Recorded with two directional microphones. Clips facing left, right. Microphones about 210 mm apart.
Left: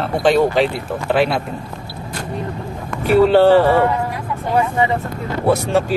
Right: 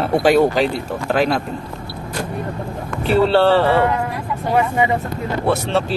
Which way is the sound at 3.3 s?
15° left (ahead or behind).